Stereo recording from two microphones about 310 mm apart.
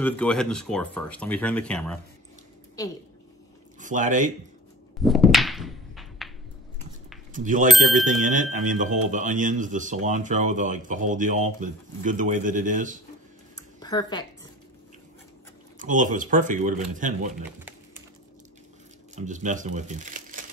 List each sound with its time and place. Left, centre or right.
0.0 s speech: centre
3.8 s speech: right
5.0 s thunk: centre
7.3 s speech: right
13.6 s a sound: centre
15.8 s speech: right
19.1 s speech: right